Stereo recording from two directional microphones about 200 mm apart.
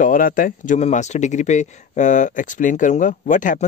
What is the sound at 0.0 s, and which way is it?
Speech, 45° left (ahead or behind).